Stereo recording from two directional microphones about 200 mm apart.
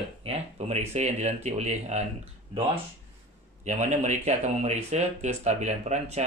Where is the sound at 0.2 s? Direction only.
30° right (ahead or behind).